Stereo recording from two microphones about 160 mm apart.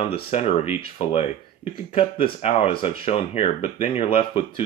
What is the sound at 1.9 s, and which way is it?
Speech, 35° left (ahead or behind).